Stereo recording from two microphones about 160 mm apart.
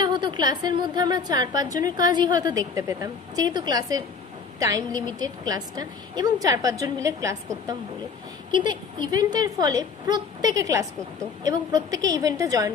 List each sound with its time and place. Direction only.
0.0 s a woman's voice: 30° right (ahead or behind)